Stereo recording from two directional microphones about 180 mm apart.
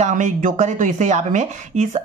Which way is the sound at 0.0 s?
45° right (ahead or behind).